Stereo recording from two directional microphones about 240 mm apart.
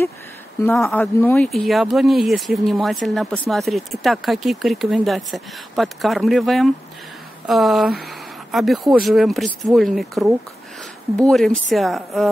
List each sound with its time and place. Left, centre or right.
0.7 s speech: centre